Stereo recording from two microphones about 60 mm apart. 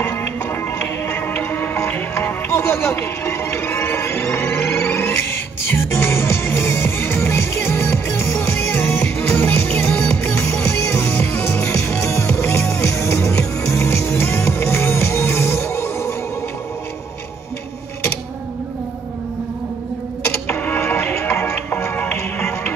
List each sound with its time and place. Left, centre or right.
1.0 s music: left
11.6 s music: left
20.4 s music: left
20.8 s music: left
21.6 s music: left
22.1 s music: left